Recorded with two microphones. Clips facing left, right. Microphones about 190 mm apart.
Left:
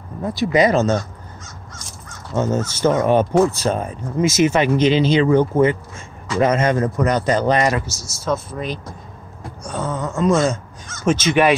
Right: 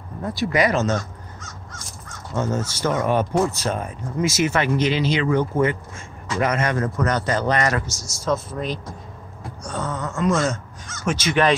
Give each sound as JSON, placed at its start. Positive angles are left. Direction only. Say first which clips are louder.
{"t": 0.2, "sound": "speech", "louder": "left 4 dB", "side_deg": 15}
{"t": 2.3, "sound": "speech", "louder": "left 4 dB", "side_deg": 20}
{"t": 7.8, "sound": "speech", "louder": "left 1 dB", "side_deg": 5}
{"t": 9.7, "sound": "a sound", "louder": "left 3 dB", "side_deg": 10}
{"t": 10.3, "sound": "speech", "louder": "left 4 dB", "side_deg": 30}